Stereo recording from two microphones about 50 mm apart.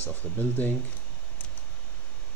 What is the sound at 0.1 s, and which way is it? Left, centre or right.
Speech, left.